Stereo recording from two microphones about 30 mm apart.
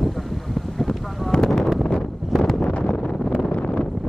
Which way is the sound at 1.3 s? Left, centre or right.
Left.